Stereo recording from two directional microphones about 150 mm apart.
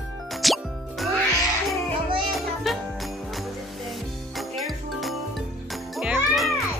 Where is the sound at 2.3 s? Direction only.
Centre (ahead or behind).